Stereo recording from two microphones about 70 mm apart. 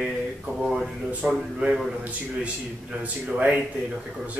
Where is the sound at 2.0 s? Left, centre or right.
Centre.